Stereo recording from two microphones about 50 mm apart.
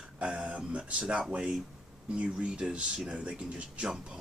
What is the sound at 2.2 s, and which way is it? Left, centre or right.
Speech, right.